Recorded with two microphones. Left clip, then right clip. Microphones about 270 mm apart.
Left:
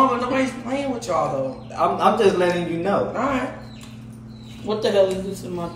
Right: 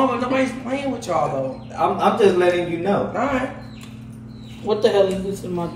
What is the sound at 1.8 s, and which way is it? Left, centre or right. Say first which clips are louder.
A man's voice: right 1 dB; centre.